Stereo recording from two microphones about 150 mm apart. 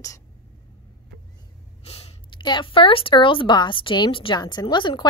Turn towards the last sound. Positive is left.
turn(degrees=30)  # may be behind; listen again after turning